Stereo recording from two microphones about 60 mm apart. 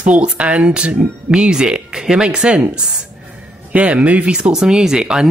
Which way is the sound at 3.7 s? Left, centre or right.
Right.